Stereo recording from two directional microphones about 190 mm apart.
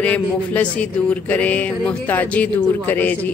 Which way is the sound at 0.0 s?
5° left (ahead or behind).